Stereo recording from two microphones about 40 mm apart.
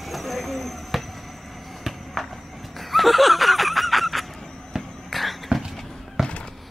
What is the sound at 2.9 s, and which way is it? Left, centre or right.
Snicker, centre.